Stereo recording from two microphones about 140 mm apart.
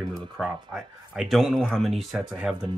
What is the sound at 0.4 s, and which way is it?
Speech, 5° right (ahead or behind).